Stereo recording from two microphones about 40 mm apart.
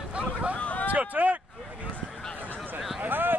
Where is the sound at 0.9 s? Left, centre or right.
Right.